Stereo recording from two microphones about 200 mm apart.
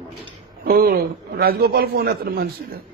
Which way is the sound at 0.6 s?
50° right (ahead or behind).